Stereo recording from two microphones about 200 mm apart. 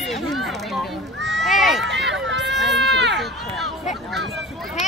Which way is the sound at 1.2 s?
60° right (ahead or behind).